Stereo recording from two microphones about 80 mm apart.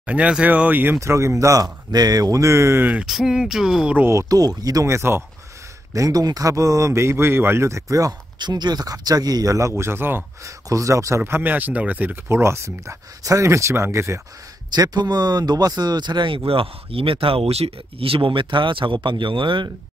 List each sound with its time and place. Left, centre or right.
0.0 s speech: centre
0.9 s speech: right
3.1 s speech: centre
4.1 s speech: right
5.9 s speech: right
6.9 s speech: right
8.4 s speech: right
10.4 s speech: right
14.7 s speech: right
18.2 s speech: right